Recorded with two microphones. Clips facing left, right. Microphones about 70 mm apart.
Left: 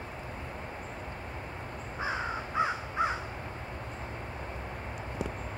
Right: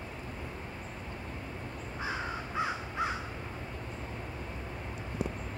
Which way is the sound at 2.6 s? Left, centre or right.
Left.